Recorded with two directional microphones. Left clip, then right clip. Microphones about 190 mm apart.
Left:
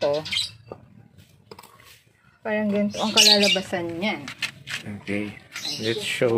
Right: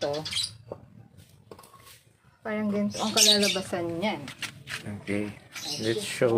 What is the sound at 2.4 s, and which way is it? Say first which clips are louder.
Speech: left 6 dB; 20° left (ahead or behind).